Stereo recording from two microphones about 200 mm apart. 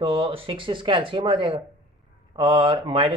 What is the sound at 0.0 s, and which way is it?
Speech, 25° right (ahead or behind).